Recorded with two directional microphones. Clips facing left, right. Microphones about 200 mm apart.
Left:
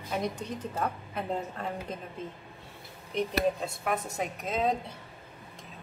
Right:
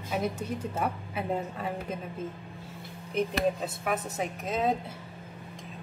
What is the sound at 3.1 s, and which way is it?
Speech, centre (ahead or behind).